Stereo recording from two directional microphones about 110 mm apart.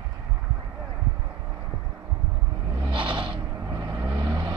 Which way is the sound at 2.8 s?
50° right (ahead or behind).